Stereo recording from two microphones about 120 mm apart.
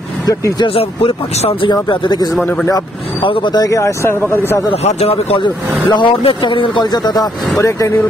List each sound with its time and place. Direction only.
0.3 s speech: 30° left (ahead or behind)
0.7 s speech: 50° left (ahead or behind)
1.7 s speech: 40° left (ahead or behind)
3.5 s speech: 30° left (ahead or behind)
4.8 s speech: 55° left (ahead or behind); by 7.2 s 35° left (ahead or behind)
7.5 s speech: 25° left (ahead or behind)